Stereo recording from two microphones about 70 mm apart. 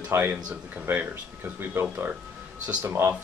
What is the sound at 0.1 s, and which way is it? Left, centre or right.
Speech, right.